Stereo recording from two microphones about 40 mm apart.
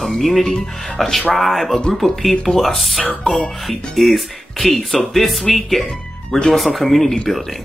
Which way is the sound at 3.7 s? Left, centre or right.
Centre.